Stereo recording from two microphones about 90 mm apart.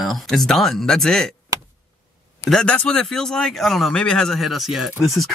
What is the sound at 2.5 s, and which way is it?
Speech, 10° left (ahead or behind).